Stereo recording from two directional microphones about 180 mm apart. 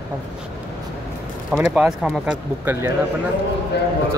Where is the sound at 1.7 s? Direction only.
10° right (ahead or behind).